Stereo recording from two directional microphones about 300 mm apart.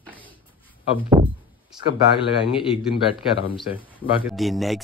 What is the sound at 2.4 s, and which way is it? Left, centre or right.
Speech, centre.